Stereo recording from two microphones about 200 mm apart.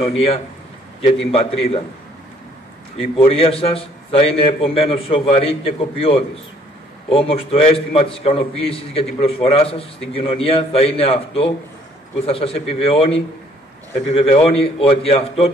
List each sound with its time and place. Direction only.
1.3 s a man's voice: 30° left (ahead or behind)
3.0 s a man's voice: 30° left (ahead or behind)